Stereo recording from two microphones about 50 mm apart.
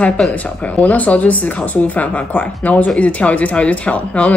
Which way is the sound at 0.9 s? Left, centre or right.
Left.